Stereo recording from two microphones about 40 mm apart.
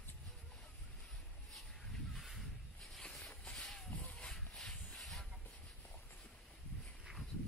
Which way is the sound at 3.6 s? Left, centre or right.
Centre.